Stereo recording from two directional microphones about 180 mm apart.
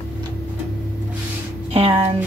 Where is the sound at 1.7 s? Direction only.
35° right (ahead or behind).